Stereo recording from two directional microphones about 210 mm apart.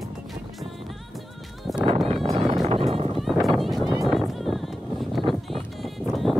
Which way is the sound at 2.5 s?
30° right (ahead or behind).